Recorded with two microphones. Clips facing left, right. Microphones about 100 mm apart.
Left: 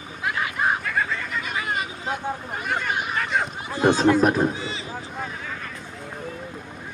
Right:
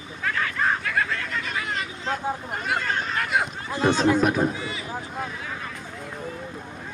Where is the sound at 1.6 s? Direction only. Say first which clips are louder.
Left 2 dB; 15° left (ahead or behind).